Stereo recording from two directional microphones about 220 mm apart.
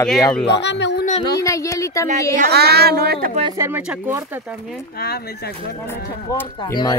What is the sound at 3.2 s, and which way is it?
Speech, 30° right (ahead or behind).